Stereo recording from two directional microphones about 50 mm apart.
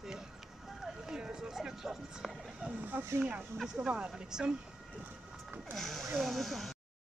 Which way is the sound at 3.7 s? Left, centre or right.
Centre.